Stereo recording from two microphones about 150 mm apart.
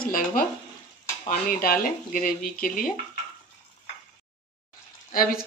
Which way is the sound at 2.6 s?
65° left (ahead or behind).